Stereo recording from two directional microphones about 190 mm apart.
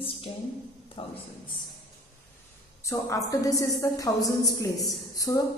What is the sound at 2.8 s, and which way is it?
A woman's voice, 15° left (ahead or behind).